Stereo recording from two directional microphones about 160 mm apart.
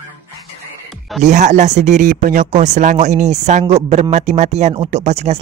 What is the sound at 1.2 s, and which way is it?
Speech, 50° right (ahead or behind).